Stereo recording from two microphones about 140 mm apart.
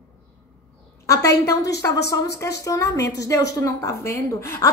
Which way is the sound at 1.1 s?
25° left (ahead or behind).